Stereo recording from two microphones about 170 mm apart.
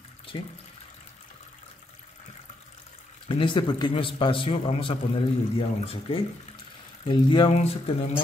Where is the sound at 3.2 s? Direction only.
30° left (ahead or behind).